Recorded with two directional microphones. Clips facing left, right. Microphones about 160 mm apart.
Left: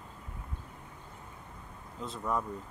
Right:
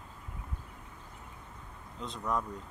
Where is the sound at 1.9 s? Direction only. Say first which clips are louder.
Left 1 dB; 5° left (ahead or behind).